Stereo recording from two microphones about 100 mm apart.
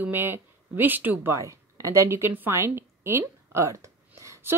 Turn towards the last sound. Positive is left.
turn(degrees=-30)  # may be behind; listen again after turning